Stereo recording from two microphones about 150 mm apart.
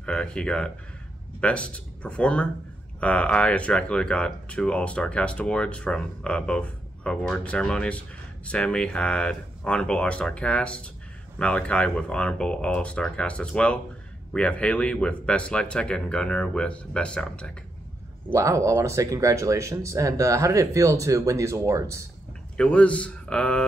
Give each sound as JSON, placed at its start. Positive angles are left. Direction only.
{"t": 0.0, "sound": "speech", "side_deg": 5}
{"t": 18.3, "sound": "speech", "side_deg": -20}
{"t": 22.6, "sound": "speech", "side_deg": 10}